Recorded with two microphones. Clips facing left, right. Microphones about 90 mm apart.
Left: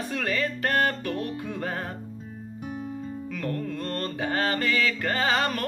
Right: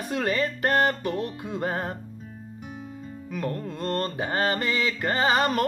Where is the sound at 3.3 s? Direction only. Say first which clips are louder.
Right 1 dB; 25° right (ahead or behind).